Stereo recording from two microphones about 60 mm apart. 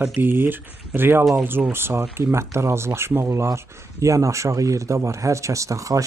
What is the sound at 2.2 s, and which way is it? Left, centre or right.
Speech, right.